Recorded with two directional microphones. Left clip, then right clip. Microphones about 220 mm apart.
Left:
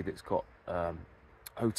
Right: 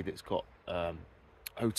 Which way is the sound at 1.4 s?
15° left (ahead or behind).